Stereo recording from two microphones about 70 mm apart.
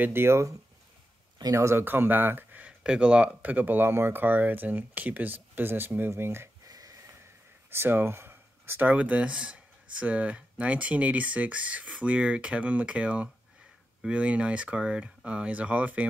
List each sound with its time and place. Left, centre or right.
0.0 s speech: right
1.9 s speech: right
2.6 s speech: centre; by 6.5 s right
6.6 s a sound: right
7.7 s speech: right